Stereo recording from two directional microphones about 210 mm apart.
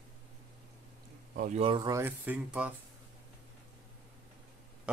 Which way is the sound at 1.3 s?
40° right (ahead or behind).